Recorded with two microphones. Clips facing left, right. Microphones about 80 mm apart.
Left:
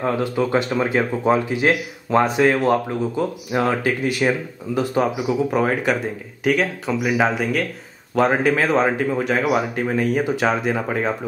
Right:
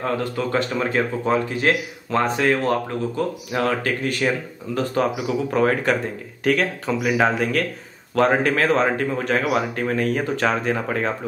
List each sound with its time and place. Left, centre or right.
0.0 s speech: centre